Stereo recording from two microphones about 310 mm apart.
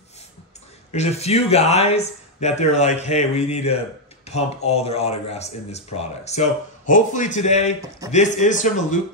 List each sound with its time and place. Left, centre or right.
0.9 s speech: centre